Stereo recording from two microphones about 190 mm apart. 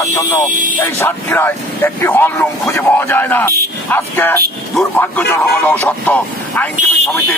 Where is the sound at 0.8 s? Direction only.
10° left (ahead or behind).